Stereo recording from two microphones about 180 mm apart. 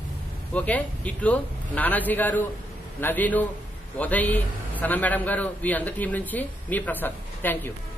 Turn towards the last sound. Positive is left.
turn(degrees=10)  # may be behind; listen again after turning